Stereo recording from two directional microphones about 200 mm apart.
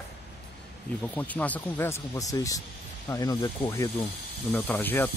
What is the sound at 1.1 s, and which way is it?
Speech, 5° left (ahead or behind).